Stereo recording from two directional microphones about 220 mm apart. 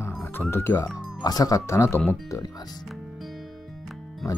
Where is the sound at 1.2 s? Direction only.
15° left (ahead or behind).